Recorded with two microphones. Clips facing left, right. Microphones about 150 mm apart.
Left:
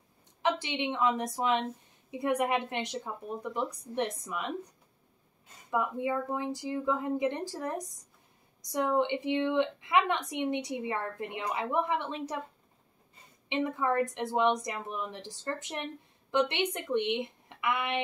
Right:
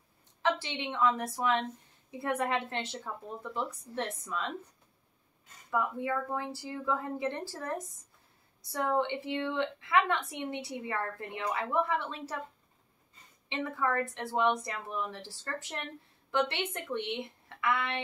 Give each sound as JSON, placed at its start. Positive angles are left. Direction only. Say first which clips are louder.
{"t": 0.4, "sound": "a woman's voice", "louder": "left 2 dB", "side_deg": 15}
{"t": 5.7, "sound": "a woman's voice", "louder": "left 1 dB", "side_deg": 20}
{"t": 13.5, "sound": "a woman's voice", "louder": "left 3 dB", "side_deg": 15}